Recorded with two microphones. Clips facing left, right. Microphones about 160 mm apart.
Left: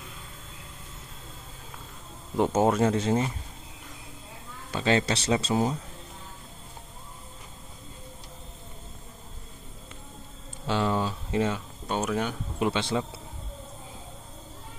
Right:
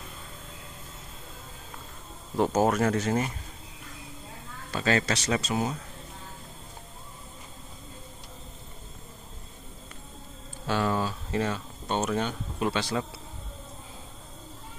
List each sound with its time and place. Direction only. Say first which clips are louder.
2.3 s speech: left 1 dB; 20° left (ahead or behind)
4.6 s speech: left 1 dB; 20° left (ahead or behind)
10.7 s speech: left 1 dB; 20° left (ahead or behind)